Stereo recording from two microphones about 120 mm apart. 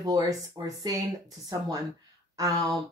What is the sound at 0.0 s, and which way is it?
Speech, 30° right (ahead or behind).